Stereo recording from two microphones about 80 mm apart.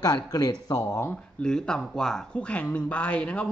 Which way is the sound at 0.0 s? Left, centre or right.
Left.